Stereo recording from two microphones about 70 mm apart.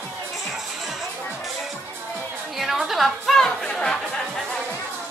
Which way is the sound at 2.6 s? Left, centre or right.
Centre.